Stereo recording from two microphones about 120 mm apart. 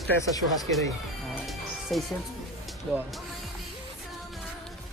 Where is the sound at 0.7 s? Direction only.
Centre (ahead or behind).